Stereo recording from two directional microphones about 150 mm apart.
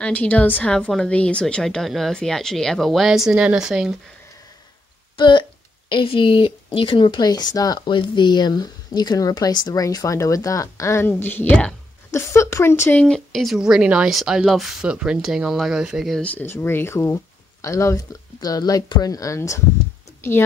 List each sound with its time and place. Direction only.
0.0 s speech: 10° left (ahead or behind)
5.1 s a woman's voice: 35° left (ahead or behind); by 13.0 s 15° left (ahead or behind)
13.0 s speech: 5° left (ahead or behind); by 19.6 s 20° left (ahead or behind)